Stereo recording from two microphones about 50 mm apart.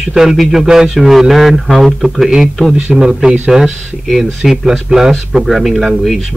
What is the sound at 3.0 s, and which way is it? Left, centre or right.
A man's voice, centre.